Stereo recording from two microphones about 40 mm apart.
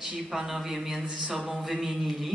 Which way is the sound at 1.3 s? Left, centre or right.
Centre.